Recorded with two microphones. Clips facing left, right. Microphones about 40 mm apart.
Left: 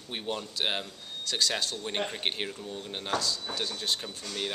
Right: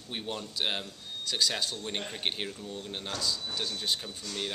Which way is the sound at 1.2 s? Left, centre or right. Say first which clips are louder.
Left 1 dB; centre.